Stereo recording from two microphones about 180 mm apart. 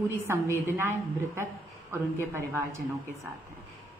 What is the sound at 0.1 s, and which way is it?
A woman's voice, 15° right (ahead or behind).